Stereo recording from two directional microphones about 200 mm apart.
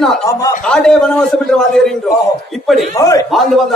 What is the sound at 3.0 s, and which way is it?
Speech, 15° left (ahead or behind).